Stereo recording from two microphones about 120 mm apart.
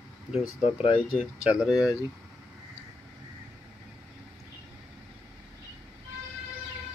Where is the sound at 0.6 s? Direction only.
55° left (ahead or behind).